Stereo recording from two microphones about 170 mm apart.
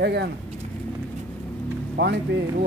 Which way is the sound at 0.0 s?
80° right.